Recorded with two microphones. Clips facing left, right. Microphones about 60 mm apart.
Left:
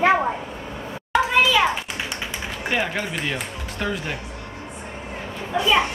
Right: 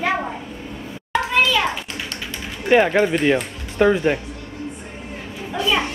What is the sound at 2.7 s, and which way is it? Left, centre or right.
Speech, right.